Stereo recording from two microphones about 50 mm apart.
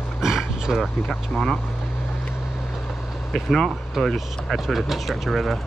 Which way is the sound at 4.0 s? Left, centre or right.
Centre.